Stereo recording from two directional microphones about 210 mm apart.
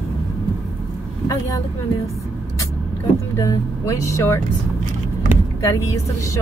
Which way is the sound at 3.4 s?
15° left (ahead or behind).